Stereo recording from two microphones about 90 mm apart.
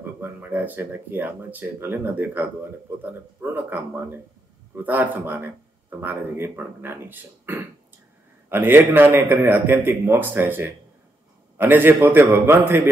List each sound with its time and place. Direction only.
0.2 s speech: 20° right (ahead or behind)